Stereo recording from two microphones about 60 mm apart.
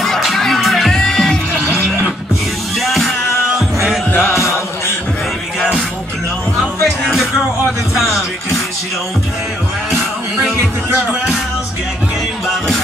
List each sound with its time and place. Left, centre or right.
0.0 s music: centre
2.8 s music: centre
4.1 s music: left
6.6 s music: centre
12.4 s music: centre